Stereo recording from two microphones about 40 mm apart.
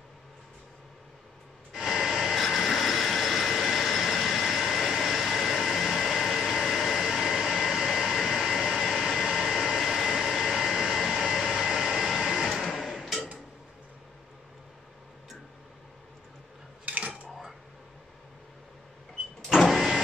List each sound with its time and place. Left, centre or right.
1.7 s a sound: centre
7.8 s vehicle: centre
12.0 s music: centre
12.7 s hammer: centre
16.8 s dishes: right
19.4 s vehicle: centre